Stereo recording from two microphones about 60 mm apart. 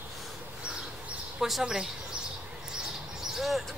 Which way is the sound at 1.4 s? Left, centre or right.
Centre.